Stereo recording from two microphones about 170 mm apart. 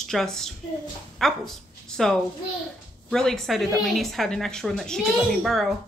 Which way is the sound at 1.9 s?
5° left (ahead or behind).